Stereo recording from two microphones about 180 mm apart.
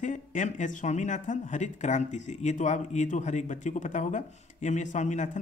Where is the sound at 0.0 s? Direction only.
45° left (ahead or behind).